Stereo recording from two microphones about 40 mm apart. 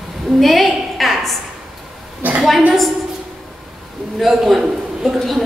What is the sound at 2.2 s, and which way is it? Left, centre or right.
Speech, right.